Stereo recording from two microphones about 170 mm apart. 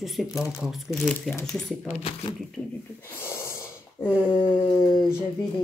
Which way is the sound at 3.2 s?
15° left (ahead or behind).